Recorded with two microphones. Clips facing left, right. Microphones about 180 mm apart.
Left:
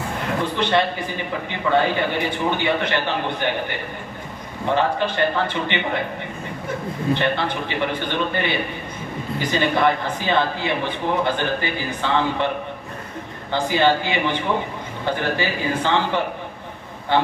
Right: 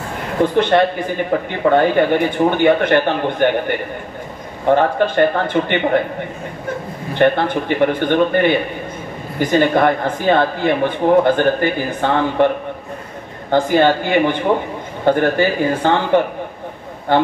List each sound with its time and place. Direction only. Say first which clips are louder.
0.4 s speech: right 8 dB; 50° right (ahead or behind)
7.2 s speech: right 8 dB; 50° right (ahead or behind)
13.5 s speech: right 5 dB; 50° right (ahead or behind)